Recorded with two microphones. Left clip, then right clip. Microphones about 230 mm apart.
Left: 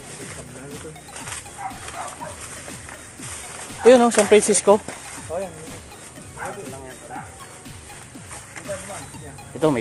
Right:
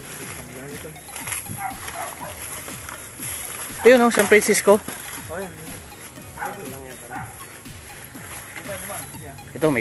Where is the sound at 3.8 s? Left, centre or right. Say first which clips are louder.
Left 1 dB; centre.